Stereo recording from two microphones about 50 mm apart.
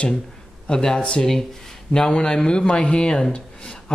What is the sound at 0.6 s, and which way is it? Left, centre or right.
Speech, centre.